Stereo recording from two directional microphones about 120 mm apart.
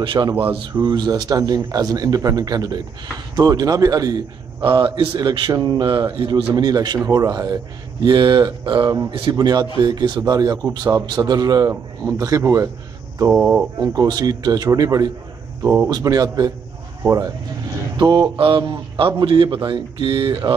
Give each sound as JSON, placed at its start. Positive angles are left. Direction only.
{"t": 0.0, "sound": "a man's voice", "side_deg": -45}
{"t": 0.4, "sound": "speech", "side_deg": -15}
{"t": 0.8, "sound": "speech", "side_deg": -35}
{"t": 13.7, "sound": "speech", "side_deg": -30}
{"t": 15.6, "sound": "speech", "side_deg": -20}
{"t": 15.9, "sound": "speech", "side_deg": -30}
{"t": 17.9, "sound": "speech", "side_deg": -35}
{"t": 18.3, "sound": "a man's voice", "side_deg": -45}